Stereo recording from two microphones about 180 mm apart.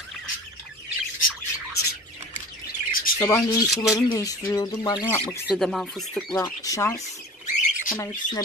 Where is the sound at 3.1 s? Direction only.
15° left (ahead or behind).